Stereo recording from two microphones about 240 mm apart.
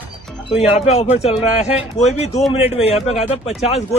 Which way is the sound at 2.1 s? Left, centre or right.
Left.